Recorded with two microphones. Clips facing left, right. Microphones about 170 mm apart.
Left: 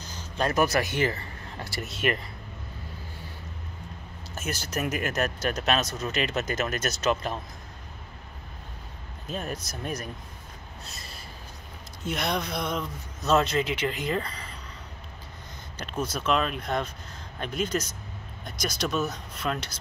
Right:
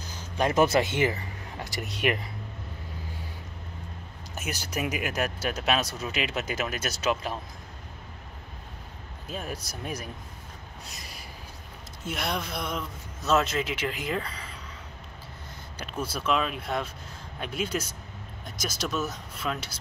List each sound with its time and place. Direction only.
0.1 s speech: 15° right (ahead or behind)
4.4 s speech: 15° right (ahead or behind)
9.3 s speech: 10° right (ahead or behind)
10.9 s a sound: 15° right (ahead or behind)
12.1 s a man's voice: 5° right (ahead or behind)
15.8 s a man's voice: 5° right (ahead or behind)